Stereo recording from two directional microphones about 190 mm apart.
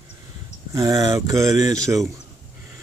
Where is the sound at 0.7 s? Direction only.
20° right (ahead or behind).